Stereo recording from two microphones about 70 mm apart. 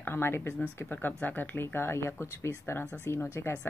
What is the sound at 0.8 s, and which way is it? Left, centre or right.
Speech, left.